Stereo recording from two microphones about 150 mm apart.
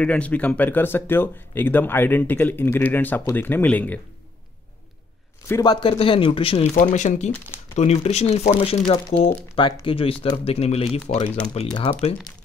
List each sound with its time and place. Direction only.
0.0 s speech: 10° left (ahead or behind)
5.5 s speech: 30° left (ahead or behind)
6.7 s speech: 55° left (ahead or behind)
11.5 s speech: 35° left (ahead or behind)